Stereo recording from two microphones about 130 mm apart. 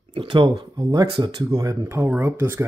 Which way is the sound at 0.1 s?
40° right (ahead or behind).